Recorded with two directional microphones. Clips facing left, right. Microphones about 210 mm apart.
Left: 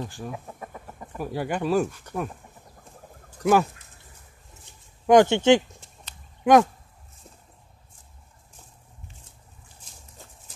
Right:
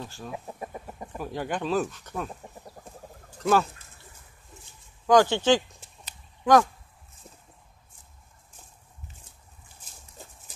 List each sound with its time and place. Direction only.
0.0 s speech: 15° left (ahead or behind)
0.3 s chicken: 15° right (ahead or behind)
1.1 s speech: 10° left (ahead or behind)
3.3 s speech: 15° left (ahead or behind)
5.0 s speech: 20° left (ahead or behind)